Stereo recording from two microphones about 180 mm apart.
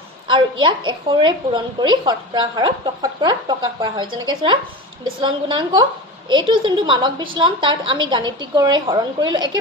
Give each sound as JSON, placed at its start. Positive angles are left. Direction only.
{"t": 0.3, "sound": "a woman's voice", "side_deg": -25}